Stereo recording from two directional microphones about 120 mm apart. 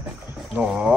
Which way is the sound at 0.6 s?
10° right (ahead or behind).